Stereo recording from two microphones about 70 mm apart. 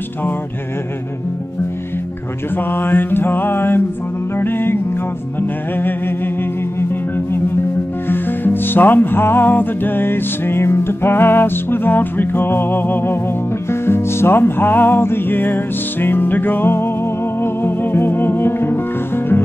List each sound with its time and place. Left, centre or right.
2.5 s music: left
5.8 s music: left
8.1 s music: left